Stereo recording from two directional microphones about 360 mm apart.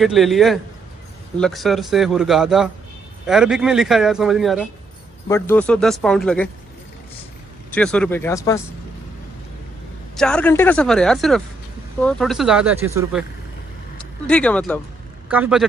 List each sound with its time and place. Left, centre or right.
0.0 s speech: centre
7.7 s speech: centre
10.1 s speech: centre
13.9 s speech: centre